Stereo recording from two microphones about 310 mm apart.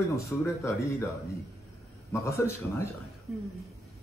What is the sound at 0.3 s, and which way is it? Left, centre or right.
Speech, centre.